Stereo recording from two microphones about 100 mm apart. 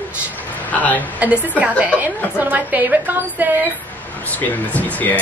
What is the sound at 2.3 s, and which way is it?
A woman's voice, 15° right (ahead or behind).